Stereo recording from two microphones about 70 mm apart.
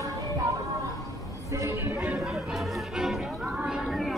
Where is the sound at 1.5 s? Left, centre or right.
Right.